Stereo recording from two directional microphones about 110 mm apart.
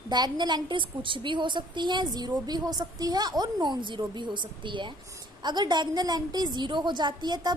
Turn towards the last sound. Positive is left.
turn(degrees=-40)  # may be behind; listen again after turning